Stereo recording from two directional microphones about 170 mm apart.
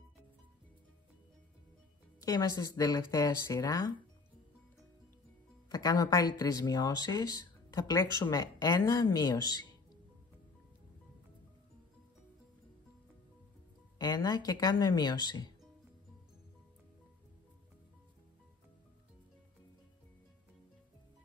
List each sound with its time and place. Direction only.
2.1 s speech: 20° left (ahead or behind)
5.7 s speech: 20° left (ahead or behind)
13.9 s speech: 20° left (ahead or behind)